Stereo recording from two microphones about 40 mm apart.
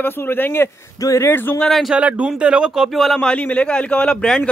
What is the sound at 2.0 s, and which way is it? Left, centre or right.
Speech, right.